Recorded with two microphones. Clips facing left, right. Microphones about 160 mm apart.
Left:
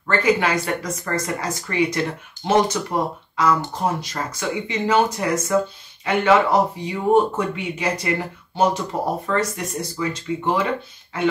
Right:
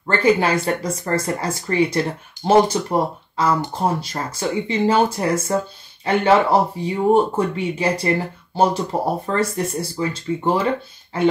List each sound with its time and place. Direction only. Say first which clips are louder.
0.0 s speech: right 2 dB; 30° right (ahead or behind)